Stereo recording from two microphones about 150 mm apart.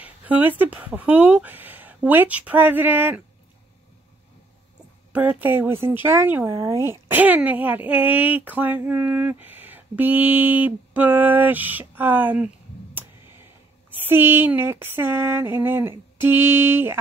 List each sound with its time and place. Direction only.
0.0 s speech: 10° right (ahead or behind)
5.1 s speech: 10° right (ahead or behind)